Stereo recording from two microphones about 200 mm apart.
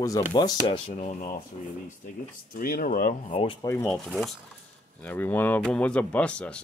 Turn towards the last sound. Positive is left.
turn(degrees=5)  # may be behind; listen again after turning